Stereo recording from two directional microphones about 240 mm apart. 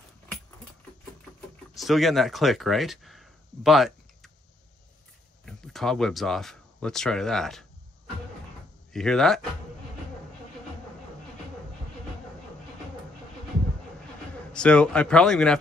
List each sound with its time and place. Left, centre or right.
1.8 s speech: centre
5.4 s speech: centre
8.9 s speech: centre
14.5 s speech: centre